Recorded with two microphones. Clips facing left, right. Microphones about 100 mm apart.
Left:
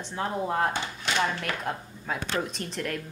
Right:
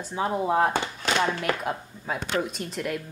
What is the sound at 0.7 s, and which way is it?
Speech, 50° right (ahead or behind).